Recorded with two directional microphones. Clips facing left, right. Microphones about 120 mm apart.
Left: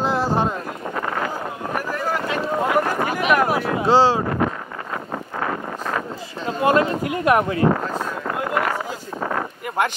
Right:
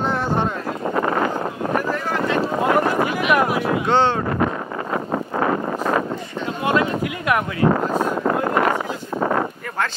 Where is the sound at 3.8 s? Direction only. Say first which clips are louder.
Left 4 dB; 35° left (ahead or behind).